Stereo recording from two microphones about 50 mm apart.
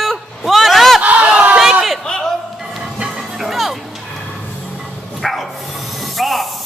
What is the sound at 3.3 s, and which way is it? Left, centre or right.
Music, centre.